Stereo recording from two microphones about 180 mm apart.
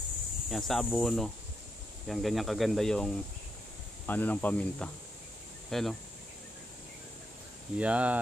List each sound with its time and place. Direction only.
0.5 s speech: centre (ahead or behind)
7.7 s speech: 5° right (ahead or behind)